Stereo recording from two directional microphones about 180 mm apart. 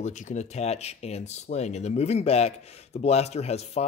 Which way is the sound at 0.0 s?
40° left (ahead or behind).